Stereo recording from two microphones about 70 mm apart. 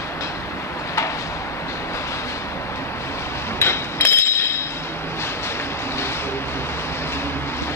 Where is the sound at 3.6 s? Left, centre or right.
Left.